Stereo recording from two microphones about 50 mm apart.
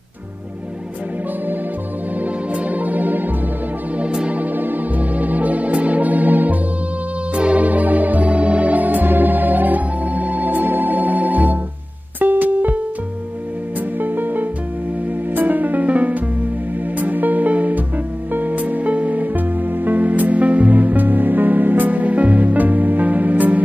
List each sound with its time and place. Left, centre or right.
2.2 s music: right
4.0 s music: centre
4.3 s music: right